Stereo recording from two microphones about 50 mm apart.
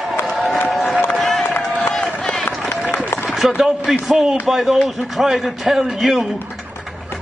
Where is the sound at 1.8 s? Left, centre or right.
Left.